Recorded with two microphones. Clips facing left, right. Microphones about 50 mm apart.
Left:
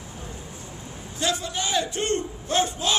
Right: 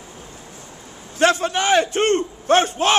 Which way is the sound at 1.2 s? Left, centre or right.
Right.